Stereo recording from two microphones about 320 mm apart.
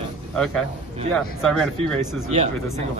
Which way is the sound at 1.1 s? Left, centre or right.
Centre.